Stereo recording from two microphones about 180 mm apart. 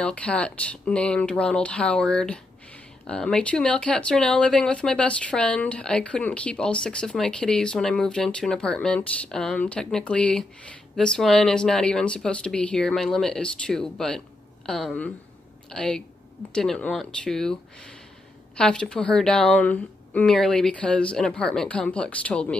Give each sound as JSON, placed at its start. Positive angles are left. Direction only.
{"t": 0.0, "sound": "speech", "side_deg": 5}